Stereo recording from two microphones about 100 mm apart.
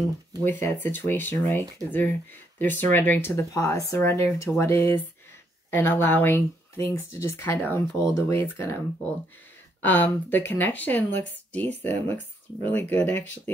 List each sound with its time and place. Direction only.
0.5 s speech: 20° left (ahead or behind)
9.8 s speech: 20° left (ahead or behind)